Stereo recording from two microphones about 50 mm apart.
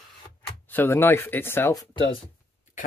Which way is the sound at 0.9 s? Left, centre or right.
Left.